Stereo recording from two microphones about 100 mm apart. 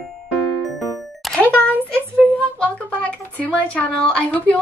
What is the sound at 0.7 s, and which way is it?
Music, centre (ahead or behind).